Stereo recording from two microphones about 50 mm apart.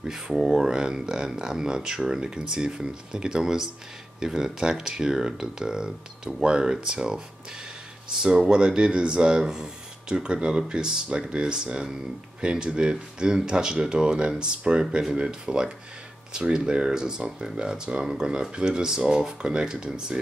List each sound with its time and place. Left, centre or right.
0.0 s speech: centre
8.2 s speech: centre